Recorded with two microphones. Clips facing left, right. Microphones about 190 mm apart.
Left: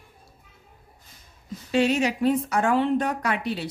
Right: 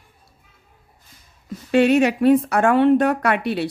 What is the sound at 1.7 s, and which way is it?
Speech, 60° right (ahead or behind).